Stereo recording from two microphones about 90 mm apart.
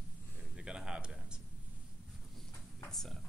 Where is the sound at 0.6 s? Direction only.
10° right (ahead or behind).